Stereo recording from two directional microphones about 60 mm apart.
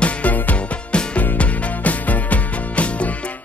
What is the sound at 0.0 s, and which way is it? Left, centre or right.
Music, left.